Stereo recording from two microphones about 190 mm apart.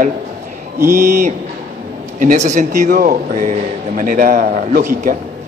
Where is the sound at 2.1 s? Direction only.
40° right (ahead or behind).